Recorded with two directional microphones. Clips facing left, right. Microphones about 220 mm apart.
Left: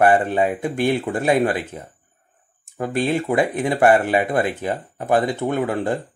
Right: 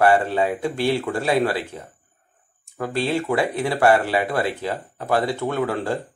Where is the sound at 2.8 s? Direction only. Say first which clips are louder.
Left 2 dB; 20° left (ahead or behind).